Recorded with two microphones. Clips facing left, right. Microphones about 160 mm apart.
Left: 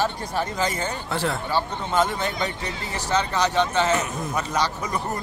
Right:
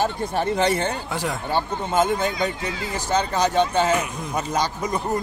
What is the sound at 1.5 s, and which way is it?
Speech, 50° right (ahead or behind).